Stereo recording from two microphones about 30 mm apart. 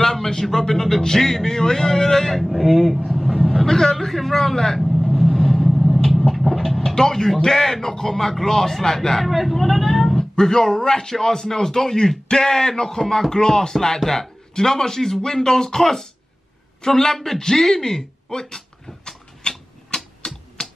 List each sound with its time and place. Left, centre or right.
0.0 s speech: centre
2.6 s speech: centre
3.1 s a sound: centre
3.6 s a man's voice: centre
3.9 s speech: centre
5.1 s vehicle: centre
7.0 s speech: centre
9.2 s speech: centre
10.1 s speech: centre
19.4 s tick-tock: left
20.2 s typewriter: left